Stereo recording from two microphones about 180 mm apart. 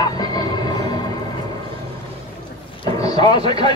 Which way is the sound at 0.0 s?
25° left (ahead or behind).